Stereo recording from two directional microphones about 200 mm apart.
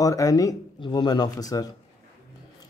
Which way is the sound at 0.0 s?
15° left (ahead or behind).